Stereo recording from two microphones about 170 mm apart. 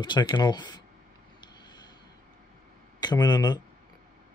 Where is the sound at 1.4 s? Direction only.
25° left (ahead or behind).